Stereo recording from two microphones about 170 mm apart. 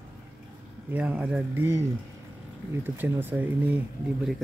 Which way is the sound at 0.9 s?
10° right (ahead or behind).